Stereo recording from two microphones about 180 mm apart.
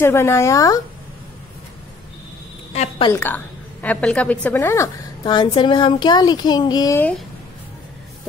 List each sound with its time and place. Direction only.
0.0 s speech: 15° left (ahead or behind)
2.7 s a woman's voice: 35° left (ahead or behind)
3.1 s a woman's voice: 10° left (ahead or behind)
7.0 s speech: 5° left (ahead or behind)